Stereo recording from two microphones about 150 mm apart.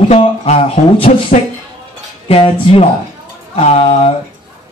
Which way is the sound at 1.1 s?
55° left (ahead or behind).